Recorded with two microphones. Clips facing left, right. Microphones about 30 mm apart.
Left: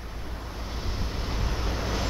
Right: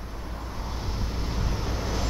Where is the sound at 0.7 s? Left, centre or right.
Centre.